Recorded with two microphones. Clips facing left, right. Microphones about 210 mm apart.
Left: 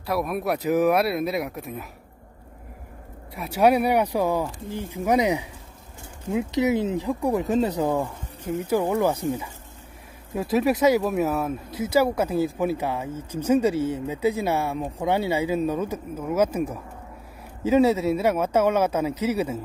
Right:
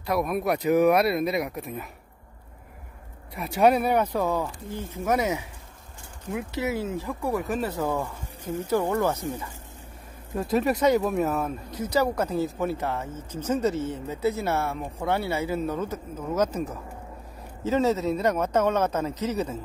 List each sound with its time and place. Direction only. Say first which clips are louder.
0.0 s speech: even; centre (ahead or behind)
3.3 s speech: left 1 dB; 5° left (ahead or behind)